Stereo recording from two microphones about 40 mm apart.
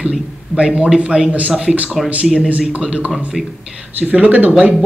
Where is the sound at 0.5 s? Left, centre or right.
Left.